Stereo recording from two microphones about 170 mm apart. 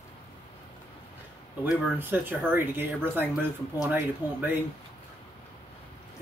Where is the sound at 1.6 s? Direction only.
10° right (ahead or behind).